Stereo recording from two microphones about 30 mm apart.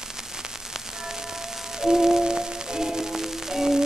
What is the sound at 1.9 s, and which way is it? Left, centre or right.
Music, centre.